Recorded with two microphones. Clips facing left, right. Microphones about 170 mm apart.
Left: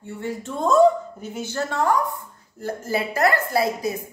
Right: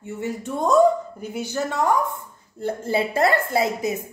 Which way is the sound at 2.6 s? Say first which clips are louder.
Right 2 dB; 25° right (ahead or behind).